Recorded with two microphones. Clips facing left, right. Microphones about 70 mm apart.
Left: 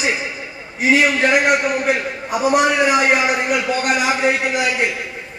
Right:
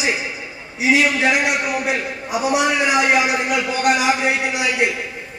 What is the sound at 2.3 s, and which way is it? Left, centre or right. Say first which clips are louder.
Speech: left 3 dB; centre.